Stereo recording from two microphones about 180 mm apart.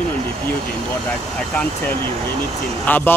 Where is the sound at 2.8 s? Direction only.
10° left (ahead or behind).